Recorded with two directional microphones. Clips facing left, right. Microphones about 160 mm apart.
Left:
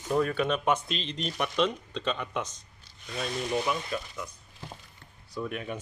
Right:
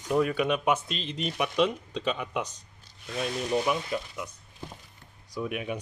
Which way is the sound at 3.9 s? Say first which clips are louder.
Right 2 dB; 20° right (ahead or behind).